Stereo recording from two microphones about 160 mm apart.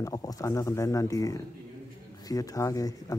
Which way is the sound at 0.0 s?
20° left (ahead or behind).